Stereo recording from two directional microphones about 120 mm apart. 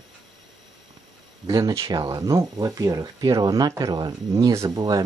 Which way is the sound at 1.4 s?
35° right (ahead or behind).